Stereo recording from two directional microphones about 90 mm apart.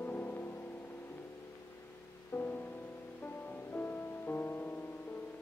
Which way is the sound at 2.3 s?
20° left (ahead or behind).